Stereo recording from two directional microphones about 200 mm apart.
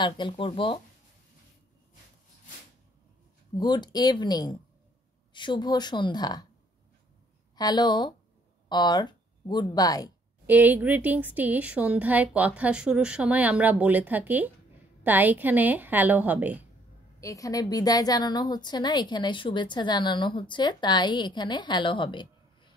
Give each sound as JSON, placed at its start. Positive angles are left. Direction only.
{"t": 0.0, "sound": "a woman's voice", "side_deg": 25}
{"t": 3.5, "sound": "a woman's voice", "side_deg": 20}
{"t": 7.5, "sound": "a woman's voice", "side_deg": 20}
{"t": 10.4, "sound": "a woman's voice", "side_deg": -10}
{"t": 17.2, "sound": "a woman's voice", "side_deg": 15}